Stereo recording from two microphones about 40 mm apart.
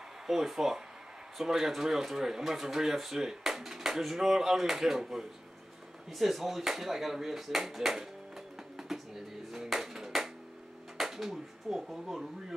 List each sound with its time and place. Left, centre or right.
0.3 s speech: centre
9.5 s music: centre
11.0 s speech: centre